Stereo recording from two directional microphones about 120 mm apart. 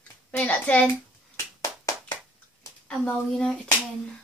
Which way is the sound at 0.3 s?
10° left (ahead or behind).